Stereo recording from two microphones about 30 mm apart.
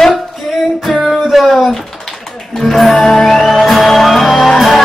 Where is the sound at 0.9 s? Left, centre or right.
Centre.